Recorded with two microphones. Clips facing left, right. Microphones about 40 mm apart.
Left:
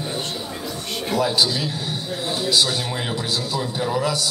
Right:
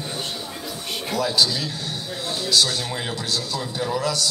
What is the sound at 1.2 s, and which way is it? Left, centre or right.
A man's voice, centre.